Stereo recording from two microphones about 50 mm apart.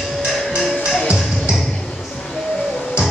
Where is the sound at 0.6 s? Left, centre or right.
Centre.